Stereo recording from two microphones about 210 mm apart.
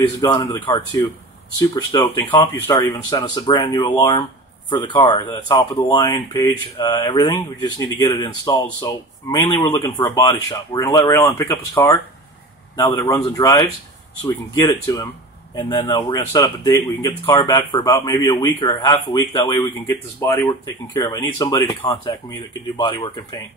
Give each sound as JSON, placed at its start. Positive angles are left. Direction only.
{"t": 0.2, "sound": "speech", "side_deg": 15}